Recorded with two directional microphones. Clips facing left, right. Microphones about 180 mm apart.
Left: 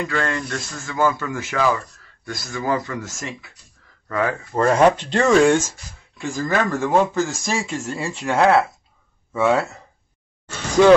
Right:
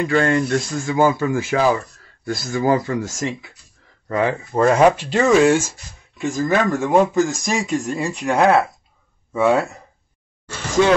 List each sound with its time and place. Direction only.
0.0 s speech: 30° right (ahead or behind)
4.6 s speech: 10° right (ahead or behind)